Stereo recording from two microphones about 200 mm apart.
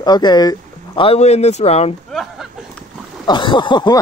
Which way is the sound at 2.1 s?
Centre (ahead or behind).